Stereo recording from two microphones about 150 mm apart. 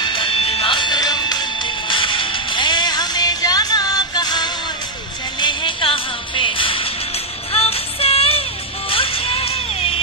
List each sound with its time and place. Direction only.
0.0 s music: 35° left (ahead or behind)